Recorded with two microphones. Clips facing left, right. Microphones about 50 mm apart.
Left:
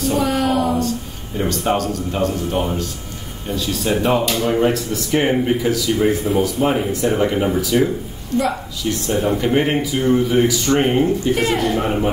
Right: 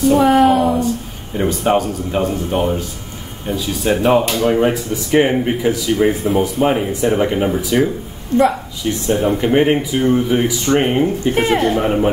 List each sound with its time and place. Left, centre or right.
0.1 s a sound: right
0.7 s speech: centre
8.3 s speech: right
9.0 s speech: right
11.2 s speech: right
11.7 s speech: centre